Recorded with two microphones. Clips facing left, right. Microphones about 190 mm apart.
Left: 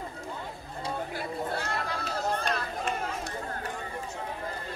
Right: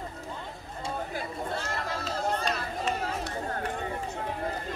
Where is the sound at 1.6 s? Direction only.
55° left (ahead or behind).